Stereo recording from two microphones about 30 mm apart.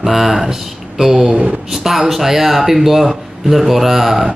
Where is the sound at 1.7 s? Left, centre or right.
Centre.